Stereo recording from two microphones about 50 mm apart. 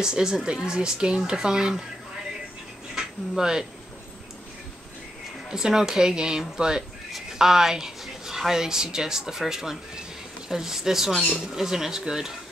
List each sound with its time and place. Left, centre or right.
0.0 s speech: centre
3.0 s speech: centre
5.5 s speech: centre